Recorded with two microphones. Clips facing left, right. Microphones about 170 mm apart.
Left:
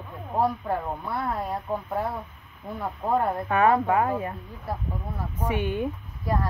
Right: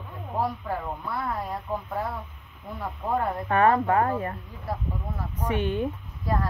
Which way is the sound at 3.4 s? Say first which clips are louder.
Right 2 dB; 10° left (ahead or behind).